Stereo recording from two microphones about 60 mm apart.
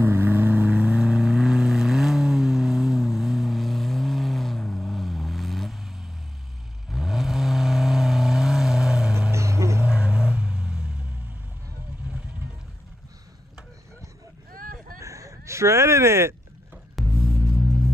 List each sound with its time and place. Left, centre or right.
0.0 s vehicle: right; by 9.1 s centre
9.3 s music: right
9.8 s vehicle: centre
15.0 s a sound: right
17.0 s music: centre